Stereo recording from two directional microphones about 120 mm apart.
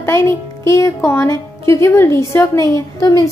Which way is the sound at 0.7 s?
25° left (ahead or behind).